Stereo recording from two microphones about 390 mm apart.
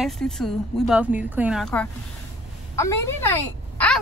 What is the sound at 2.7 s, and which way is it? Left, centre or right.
Speech, centre.